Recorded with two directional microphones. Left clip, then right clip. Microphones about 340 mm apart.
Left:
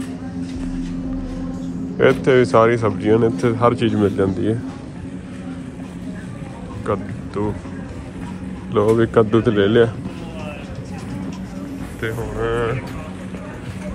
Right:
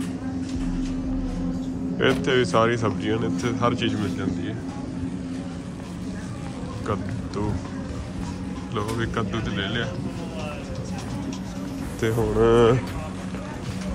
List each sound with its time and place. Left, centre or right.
2.0 s speech: centre
6.9 s speech: centre
8.7 s speech: centre
12.0 s speech: right